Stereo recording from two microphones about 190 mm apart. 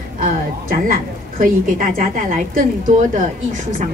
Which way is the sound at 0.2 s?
45° right (ahead or behind).